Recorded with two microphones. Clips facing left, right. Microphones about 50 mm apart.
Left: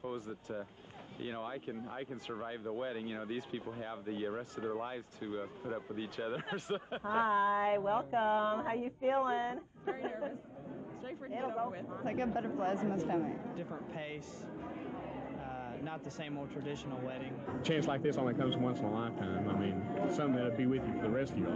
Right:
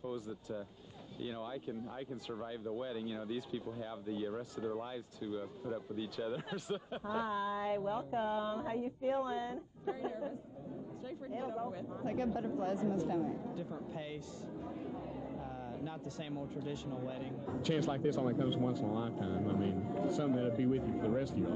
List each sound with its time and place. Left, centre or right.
0.0 s speech: left